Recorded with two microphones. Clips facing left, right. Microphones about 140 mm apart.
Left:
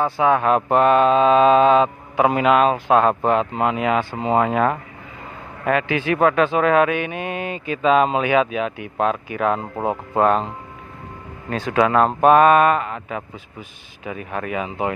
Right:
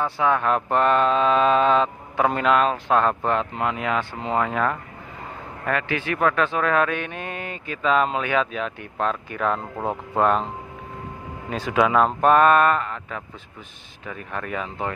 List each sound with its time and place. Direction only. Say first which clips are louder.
0.2 s speech: left 4 dB; 20° left (ahead or behind); by 10.5 s centre (ahead or behind)
11.5 s speech: left 2 dB; centre (ahead or behind)